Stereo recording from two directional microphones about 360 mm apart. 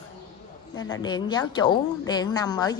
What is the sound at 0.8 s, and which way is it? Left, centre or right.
A woman's voice, centre.